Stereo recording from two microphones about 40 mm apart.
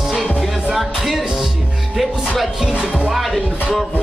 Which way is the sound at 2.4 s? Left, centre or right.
Centre.